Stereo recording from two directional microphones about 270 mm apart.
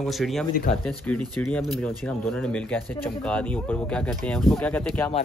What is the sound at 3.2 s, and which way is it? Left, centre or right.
Speech, centre.